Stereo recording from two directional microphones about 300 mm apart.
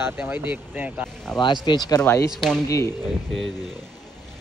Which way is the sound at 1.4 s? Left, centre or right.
Centre.